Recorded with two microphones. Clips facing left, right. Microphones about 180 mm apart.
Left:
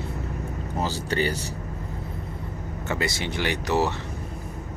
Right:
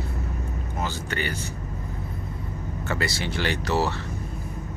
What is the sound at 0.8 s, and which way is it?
Speech, 35° left (ahead or behind).